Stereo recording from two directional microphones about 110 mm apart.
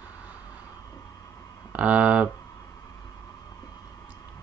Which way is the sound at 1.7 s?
15° right (ahead or behind).